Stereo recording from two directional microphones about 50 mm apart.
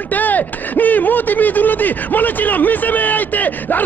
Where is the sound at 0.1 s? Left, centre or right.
Left.